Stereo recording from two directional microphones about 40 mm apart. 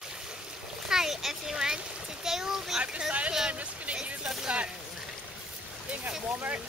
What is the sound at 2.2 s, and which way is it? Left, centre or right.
Splash, centre.